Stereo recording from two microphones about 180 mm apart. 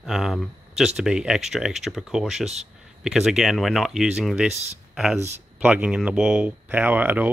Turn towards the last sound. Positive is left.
turn(degrees=-10)  # may be behind; listen again after turning